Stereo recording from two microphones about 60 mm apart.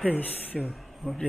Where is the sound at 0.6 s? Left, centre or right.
Centre.